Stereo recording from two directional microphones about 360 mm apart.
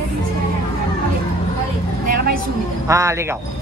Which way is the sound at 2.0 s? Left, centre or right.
Right.